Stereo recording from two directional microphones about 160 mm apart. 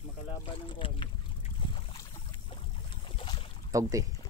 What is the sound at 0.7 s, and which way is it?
Speech, 30° left (ahead or behind).